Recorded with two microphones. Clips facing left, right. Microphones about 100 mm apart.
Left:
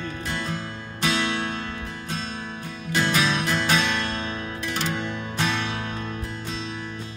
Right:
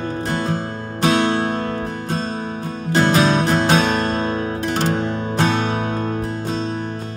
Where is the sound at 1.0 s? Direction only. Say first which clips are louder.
Right 8 dB; 45° right (ahead or behind).